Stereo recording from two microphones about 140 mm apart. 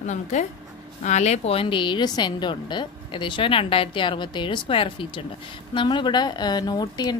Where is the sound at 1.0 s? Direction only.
55° left (ahead or behind).